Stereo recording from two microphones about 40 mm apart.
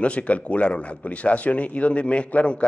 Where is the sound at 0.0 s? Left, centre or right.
Left.